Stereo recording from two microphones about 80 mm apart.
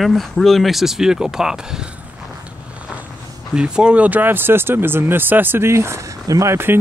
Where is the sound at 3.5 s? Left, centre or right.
Centre; by 6.6 s right.